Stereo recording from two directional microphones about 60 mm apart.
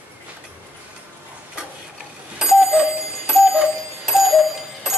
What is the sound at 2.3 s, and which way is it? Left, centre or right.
Alarm clock, centre.